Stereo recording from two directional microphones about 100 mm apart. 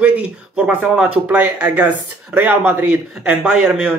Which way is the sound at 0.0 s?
10° right (ahead or behind).